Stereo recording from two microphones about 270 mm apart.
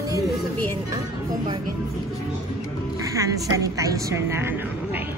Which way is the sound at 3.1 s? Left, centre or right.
Centre.